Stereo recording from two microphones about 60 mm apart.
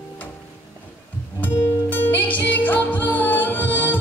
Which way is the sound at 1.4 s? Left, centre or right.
Left.